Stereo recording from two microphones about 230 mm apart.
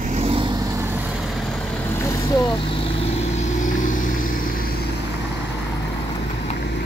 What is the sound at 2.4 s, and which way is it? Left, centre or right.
Vehicle, left.